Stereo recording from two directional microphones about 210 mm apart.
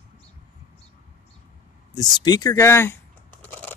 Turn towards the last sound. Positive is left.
turn(degrees=10)  # may be behind; listen again after turning